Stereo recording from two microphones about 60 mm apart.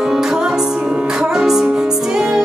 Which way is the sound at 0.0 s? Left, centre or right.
Centre.